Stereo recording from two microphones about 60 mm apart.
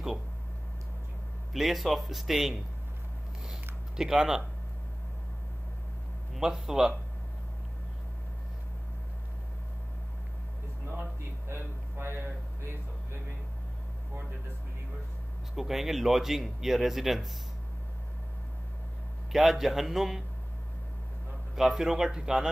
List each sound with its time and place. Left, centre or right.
1.5 s speech: centre
3.9 s a man's voice: centre
6.3 s a man's voice: centre
11.4 s a sound: right
15.5 s speech: centre
19.3 s speech: centre
21.5 s a man's voice: centre